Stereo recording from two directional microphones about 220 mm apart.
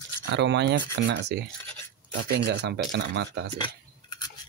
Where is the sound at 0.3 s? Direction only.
50° right (ahead or behind).